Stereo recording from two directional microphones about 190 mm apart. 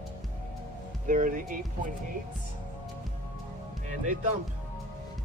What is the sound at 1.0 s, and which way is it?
Speech, 45° right (ahead or behind).